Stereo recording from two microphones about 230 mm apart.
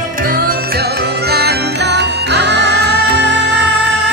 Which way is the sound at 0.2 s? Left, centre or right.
Right.